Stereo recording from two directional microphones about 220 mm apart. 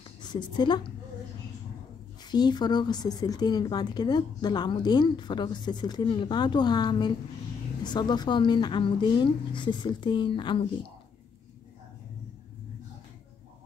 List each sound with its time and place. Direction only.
0.2 s a woman's voice: 20° left (ahead or behind)
2.2 s speech: 20° left (ahead or behind)